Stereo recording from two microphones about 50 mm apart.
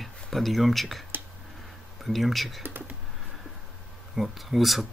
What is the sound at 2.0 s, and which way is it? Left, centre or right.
Speech, centre.